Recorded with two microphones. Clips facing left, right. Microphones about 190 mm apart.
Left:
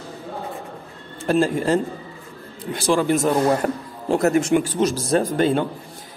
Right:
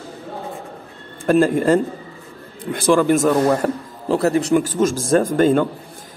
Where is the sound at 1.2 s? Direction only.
50° right (ahead or behind).